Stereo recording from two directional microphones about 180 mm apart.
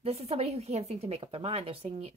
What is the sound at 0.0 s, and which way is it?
A woman's voice, 35° right (ahead or behind).